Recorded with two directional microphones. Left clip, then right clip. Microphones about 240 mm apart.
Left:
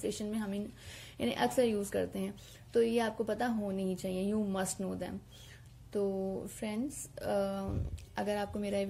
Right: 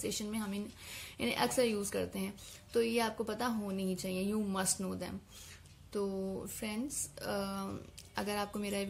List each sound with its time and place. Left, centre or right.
0.0 s a woman's voice: right